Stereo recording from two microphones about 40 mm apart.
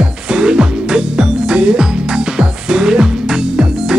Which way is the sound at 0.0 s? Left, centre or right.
Centre.